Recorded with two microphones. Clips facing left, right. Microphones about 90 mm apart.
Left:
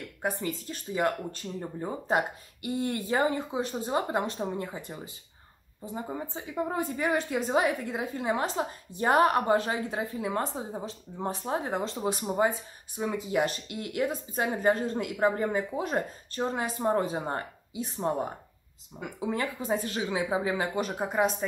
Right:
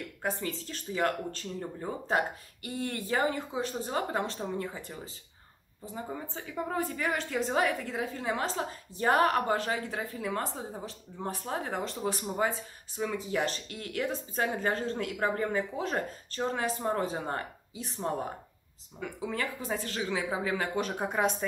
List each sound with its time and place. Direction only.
0.2 s speech: 15° left (ahead or behind)
6.1 s speech: 20° left (ahead or behind)
20.7 s speech: 5° left (ahead or behind)